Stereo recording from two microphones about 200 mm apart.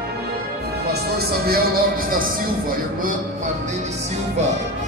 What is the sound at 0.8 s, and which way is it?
Music, 50° right (ahead or behind).